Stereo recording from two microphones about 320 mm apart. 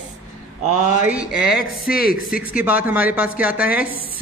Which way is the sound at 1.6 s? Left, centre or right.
Left.